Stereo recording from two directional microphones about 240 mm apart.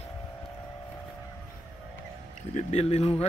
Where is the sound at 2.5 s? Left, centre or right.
Left.